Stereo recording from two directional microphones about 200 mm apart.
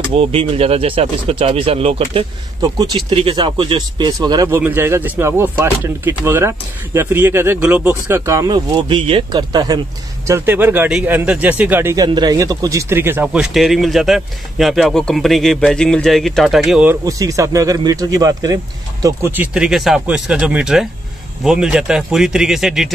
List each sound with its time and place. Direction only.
0.1 s speech: 30° right (ahead or behind); by 22.8 s centre (ahead or behind)